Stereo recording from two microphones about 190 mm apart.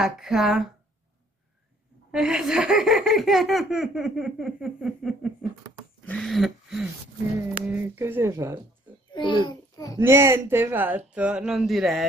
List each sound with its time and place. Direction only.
0.0 s speech: centre (ahead or behind)
2.0 s speech: 5° right (ahead or behind)
9.1 s a child's voice: 25° left (ahead or behind)
9.9 s speech: 15° right (ahead or behind)